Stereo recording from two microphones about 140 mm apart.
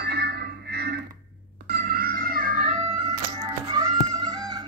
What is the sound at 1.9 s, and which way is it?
Music, 90° right.